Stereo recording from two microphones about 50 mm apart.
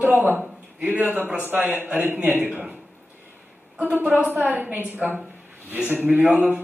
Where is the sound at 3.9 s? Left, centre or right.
Right.